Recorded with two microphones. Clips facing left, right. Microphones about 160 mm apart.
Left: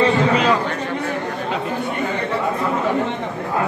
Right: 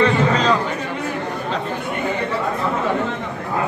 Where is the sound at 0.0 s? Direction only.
10° left (ahead or behind).